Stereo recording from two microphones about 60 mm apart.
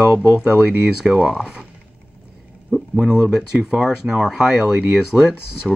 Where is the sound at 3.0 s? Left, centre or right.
Centre.